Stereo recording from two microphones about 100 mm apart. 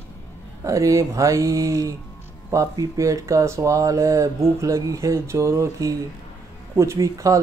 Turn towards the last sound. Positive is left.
turn(degrees=-30)  # may be behind; listen again after turning